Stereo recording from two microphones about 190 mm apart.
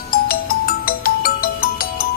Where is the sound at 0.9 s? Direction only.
50° left (ahead or behind).